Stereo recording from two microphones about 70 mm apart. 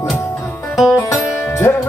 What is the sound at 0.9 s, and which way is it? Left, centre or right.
Music, left.